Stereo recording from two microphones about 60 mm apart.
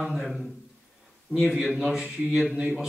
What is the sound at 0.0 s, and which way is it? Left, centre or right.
Speech, centre.